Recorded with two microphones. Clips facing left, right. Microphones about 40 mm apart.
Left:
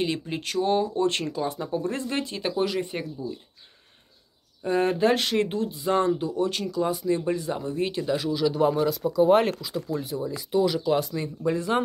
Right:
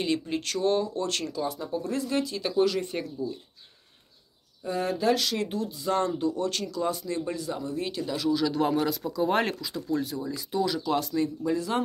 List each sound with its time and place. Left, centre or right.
0.0 s speech: centre; by 2.5 s left
2.5 s speech: centre
4.6 s speech: left
8.3 s speech: centre